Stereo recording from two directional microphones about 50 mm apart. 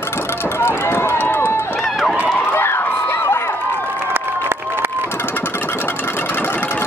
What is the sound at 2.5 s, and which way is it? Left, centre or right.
Crowd, left.